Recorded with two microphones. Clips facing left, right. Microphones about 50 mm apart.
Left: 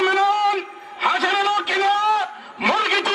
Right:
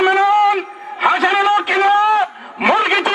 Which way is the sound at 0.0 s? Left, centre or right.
Right.